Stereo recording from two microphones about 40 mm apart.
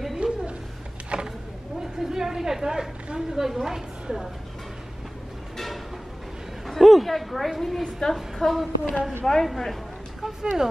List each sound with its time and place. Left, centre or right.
0.2 s a sound: right
1.8 s chatter: centre
3.2 s a woman's voice: centre
6.7 s a woman's voice: centre
10.4 s a woman's voice: centre